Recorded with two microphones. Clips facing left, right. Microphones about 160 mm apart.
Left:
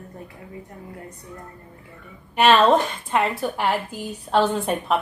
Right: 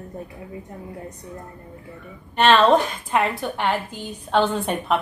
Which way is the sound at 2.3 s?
5° left (ahead or behind).